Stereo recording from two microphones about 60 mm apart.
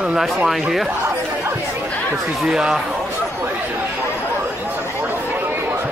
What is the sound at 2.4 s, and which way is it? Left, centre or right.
Speech, centre.